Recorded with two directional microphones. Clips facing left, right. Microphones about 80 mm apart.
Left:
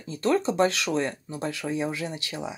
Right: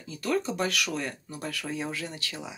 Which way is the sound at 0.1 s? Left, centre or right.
Left.